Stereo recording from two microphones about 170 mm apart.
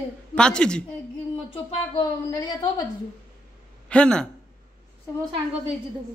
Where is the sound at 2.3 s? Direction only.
20° left (ahead or behind).